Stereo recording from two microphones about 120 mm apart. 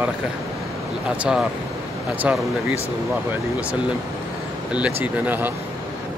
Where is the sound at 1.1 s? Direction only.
5° right (ahead or behind).